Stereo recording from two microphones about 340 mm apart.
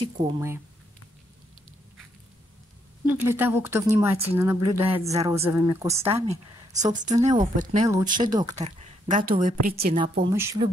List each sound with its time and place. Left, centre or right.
0.0 s speech: centre
3.1 s speech: centre